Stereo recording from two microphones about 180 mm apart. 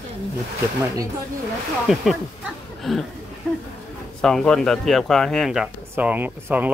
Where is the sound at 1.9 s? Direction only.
Centre (ahead or behind).